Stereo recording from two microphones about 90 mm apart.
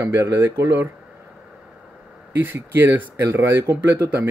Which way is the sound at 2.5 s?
25° right (ahead or behind).